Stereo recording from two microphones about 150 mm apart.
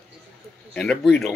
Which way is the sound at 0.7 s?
5° left (ahead or behind).